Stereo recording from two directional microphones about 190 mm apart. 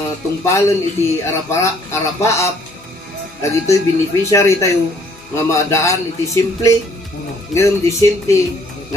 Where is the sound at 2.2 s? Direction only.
15° left (ahead or behind).